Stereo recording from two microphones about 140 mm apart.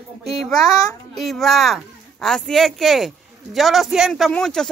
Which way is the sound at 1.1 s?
Centre (ahead or behind).